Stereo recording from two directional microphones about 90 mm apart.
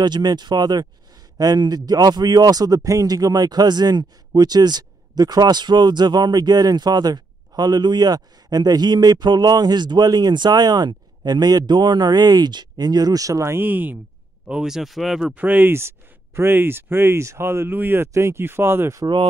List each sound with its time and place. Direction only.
0.0 s speech: 50° right (ahead or behind); by 13.9 s 20° right (ahead or behind)
14.5 s speech: 5° right (ahead or behind)
15.3 s speech: 20° right (ahead or behind)